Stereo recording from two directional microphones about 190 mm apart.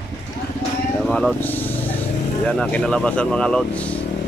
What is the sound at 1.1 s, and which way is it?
Vehicle, 5° left (ahead or behind).